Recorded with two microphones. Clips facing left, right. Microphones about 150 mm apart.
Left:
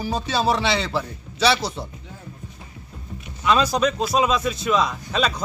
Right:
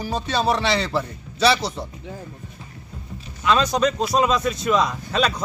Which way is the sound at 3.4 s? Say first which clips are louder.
Even; 5° left (ahead or behind).